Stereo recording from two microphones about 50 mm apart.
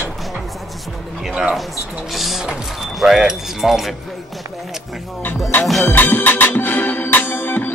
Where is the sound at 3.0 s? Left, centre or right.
Centre.